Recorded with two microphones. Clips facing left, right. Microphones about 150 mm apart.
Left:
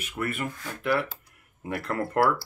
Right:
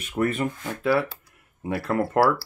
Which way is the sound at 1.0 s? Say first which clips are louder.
Right 5 dB; 25° right (ahead or behind).